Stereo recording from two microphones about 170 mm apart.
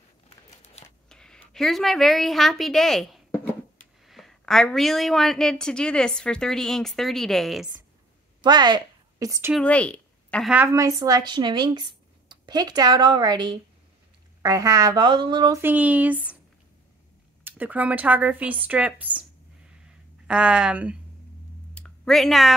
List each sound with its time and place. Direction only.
1.0 s a woman's voice: 5° left (ahead or behind)
8.4 s a woman's voice: 25° right (ahead or behind)
9.5 s speech: 5° left (ahead or behind)
10.5 s a woman's voice: 15° right (ahead or behind)
15.6 s speech: 10° right (ahead or behind)
17.4 s speech: 10° right (ahead or behind)
20.2 s speech: 5° right (ahead or behind)
21.7 s a sound: 5° left (ahead or behind)